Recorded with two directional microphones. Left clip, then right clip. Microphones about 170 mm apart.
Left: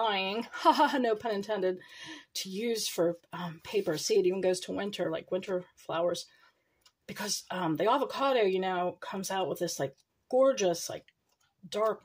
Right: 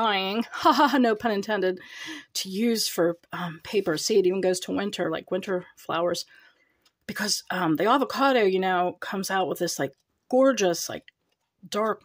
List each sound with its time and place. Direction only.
0.0 s speech: 45° right (ahead or behind)